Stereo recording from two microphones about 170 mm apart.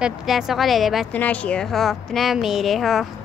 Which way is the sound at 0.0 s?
Centre (ahead or behind).